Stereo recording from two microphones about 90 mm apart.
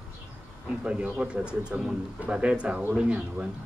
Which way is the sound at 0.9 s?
10° right (ahead or behind).